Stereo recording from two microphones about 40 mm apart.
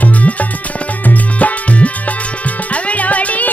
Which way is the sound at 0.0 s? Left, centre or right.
Left.